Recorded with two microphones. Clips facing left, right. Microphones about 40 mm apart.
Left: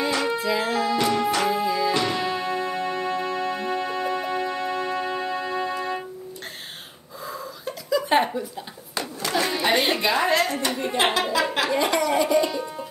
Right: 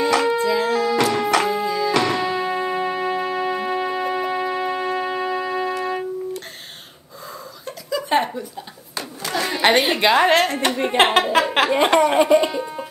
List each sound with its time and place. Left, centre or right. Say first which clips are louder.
0.2 s music: right 5 dB; centre
0.9 s music: right 3 dB; right
1.5 s music: right 1 dB; centre
2.2 s music: right 4 dB; centre
7.6 s a sound: left 1 dB; centre
9.6 s music: right 7 dB; right
9.9 s a woman's voice: right 6 dB; right